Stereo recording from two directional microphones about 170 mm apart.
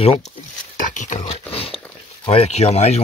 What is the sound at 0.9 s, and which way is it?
Dog, 45° left (ahead or behind).